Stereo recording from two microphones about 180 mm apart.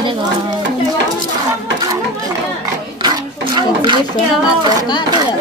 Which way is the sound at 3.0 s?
25° right (ahead or behind).